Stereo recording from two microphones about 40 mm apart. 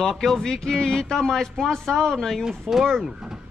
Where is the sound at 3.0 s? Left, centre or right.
Centre.